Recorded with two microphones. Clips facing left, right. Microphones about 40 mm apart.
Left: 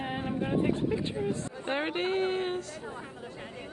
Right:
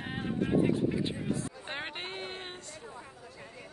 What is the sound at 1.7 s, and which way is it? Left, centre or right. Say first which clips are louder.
Speech: left 13 dB; centre.